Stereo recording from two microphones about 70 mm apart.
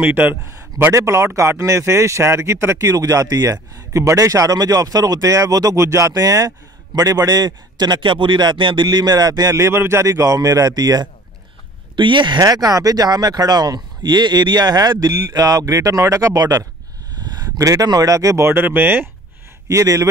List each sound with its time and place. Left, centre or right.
0.0 s a man's voice: right
0.9 s speech: right
5.8 s speech: right
9.6 s speech: right
12.3 s speech: right
17.2 s a sound: right
17.6 s speech: right
17.8 s speech: right
18.4 s speech: right
19.7 s speech: right